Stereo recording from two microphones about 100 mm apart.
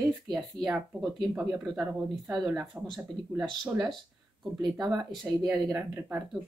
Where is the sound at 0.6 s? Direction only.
5° right (ahead or behind).